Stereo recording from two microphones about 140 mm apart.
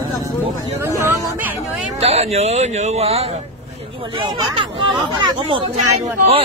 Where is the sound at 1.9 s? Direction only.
45° right (ahead or behind).